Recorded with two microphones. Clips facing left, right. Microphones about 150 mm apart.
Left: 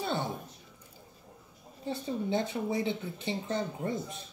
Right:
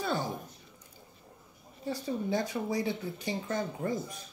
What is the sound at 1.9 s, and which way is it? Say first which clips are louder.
Speech: even; 25° left (ahead or behind).